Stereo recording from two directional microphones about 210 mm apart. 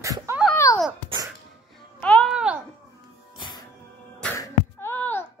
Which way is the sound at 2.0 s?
5° left (ahead or behind).